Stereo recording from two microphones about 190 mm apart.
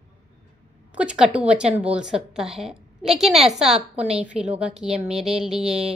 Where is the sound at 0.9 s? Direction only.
5° right (ahead or behind).